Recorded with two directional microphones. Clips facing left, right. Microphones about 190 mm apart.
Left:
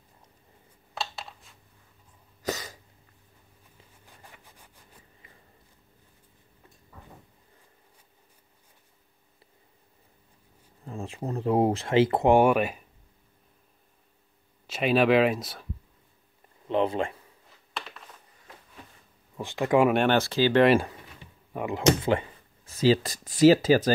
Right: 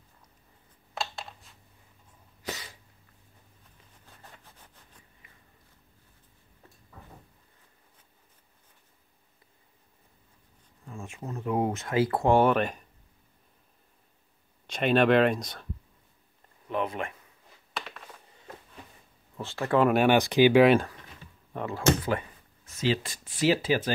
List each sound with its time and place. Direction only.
2.4 s cough: 40° left (ahead or behind)
4.2 s a sound: 10° left (ahead or behind)
10.9 s speech: 35° left (ahead or behind); by 12.8 s 10° left (ahead or behind)
14.7 s speech: 5° left (ahead or behind)
16.6 s a sound: 30° left (ahead or behind)
19.3 s speech: 15° left (ahead or behind)
19.9 s speech: 10° right (ahead or behind)
20.8 s a sound: 15° left (ahead or behind)
22.7 s speech: 35° left (ahead or behind)